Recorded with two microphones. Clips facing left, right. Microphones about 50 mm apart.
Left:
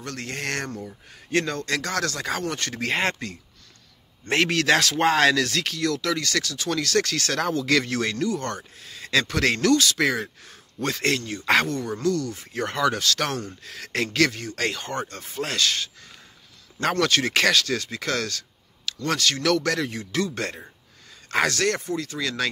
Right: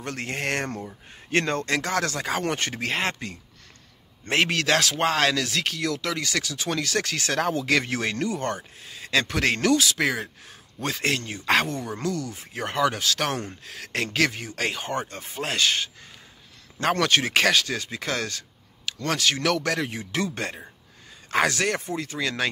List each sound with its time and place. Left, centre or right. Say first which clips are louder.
0.0 s speech: right 2 dB; right
1.4 s speech: right 2 dB; right
1.7 s speech: right 1 dB; centre
2.8 s speech: left 6 dB; centre
4.3 s speech: left 2 dB; centre
11.4 s speech: left 2 dB; centre; by 15.9 s right
17.0 s speech: left 1 dB; centre